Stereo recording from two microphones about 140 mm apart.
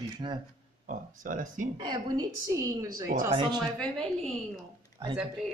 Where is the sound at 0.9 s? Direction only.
70° right (ahead or behind).